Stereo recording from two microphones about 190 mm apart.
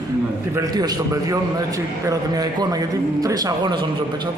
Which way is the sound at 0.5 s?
20° right (ahead or behind).